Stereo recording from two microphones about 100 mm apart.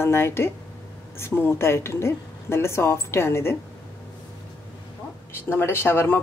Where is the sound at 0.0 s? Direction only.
25° left (ahead or behind).